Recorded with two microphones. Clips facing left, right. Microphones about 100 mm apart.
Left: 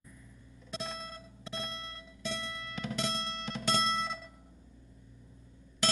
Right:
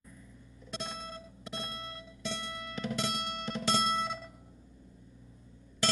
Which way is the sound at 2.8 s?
10° right (ahead or behind).